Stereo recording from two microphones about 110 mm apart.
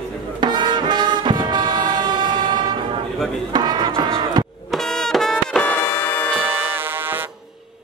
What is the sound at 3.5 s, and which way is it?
Cattle, 40° right (ahead or behind).